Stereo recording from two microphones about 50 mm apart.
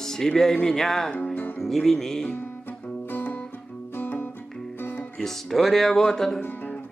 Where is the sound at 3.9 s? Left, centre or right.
Left.